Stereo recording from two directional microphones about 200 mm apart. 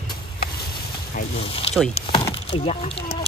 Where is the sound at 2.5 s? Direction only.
30° left (ahead or behind).